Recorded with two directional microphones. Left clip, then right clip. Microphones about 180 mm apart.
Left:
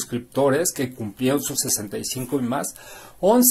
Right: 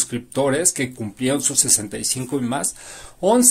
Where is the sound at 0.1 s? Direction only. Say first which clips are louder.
Left 2 dB; 20° right (ahead or behind).